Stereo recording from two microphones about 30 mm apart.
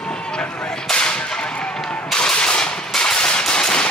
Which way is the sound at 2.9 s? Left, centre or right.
Left.